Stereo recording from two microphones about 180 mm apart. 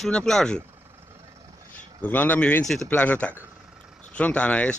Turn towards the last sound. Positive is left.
turn(degrees=10)  # may be behind; listen again after turning